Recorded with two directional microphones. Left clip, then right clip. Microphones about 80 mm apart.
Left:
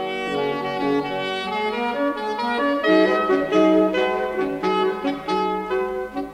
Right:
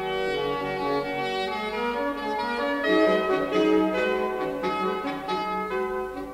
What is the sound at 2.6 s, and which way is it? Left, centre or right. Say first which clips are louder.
Music: left 5 dB; right.